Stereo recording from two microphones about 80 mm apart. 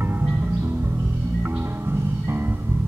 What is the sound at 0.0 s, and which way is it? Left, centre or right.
Music, right.